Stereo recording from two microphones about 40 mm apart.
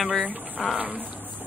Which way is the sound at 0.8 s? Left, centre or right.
Right.